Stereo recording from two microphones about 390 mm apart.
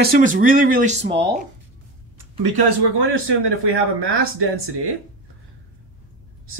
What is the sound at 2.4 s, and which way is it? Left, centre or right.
A man's voice, right.